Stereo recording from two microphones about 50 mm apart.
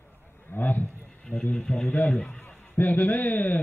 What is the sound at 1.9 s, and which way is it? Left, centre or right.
A man's voice, left.